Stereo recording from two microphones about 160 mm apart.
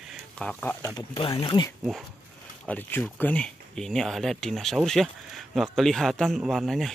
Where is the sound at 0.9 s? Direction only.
30° left (ahead or behind).